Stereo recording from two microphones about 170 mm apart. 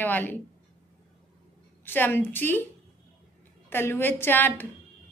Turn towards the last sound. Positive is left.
turn(degrees=10)  # may be behind; listen again after turning